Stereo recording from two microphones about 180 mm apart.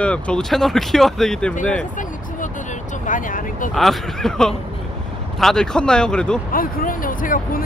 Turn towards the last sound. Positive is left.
turn(degrees=50)  # may be behind; listen again after turning